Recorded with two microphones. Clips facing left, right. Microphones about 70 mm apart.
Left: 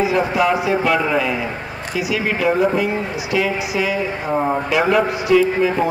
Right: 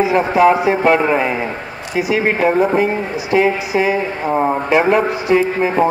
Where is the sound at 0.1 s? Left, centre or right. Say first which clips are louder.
Right 5 dB; right.